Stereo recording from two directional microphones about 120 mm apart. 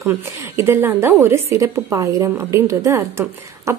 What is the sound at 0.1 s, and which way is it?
A woman's voice, 20° right (ahead or behind).